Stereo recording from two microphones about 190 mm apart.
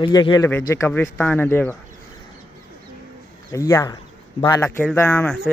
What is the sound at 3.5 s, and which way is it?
Speech, 15° left (ahead or behind).